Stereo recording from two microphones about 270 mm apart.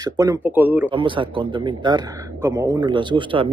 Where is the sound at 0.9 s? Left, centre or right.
Centre.